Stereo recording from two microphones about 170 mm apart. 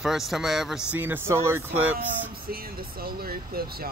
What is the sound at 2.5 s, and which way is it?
Speech, 60° right (ahead or behind).